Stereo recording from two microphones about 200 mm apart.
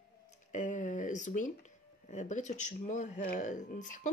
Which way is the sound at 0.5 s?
40° left (ahead or behind).